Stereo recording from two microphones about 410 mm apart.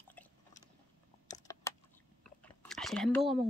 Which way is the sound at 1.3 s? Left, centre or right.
Centre.